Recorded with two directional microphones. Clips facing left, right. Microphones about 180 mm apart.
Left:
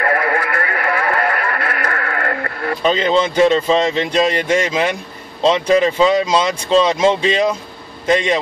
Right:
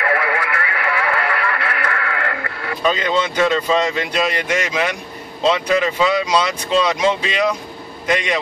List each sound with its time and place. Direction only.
0.0 s radio: 45° left (ahead or behind)
2.8 s speech: 25° left (ahead or behind)